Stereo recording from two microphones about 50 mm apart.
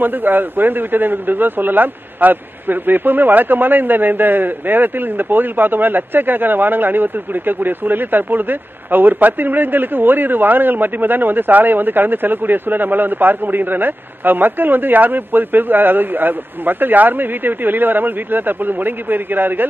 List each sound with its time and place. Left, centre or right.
0.0 s a man's voice: right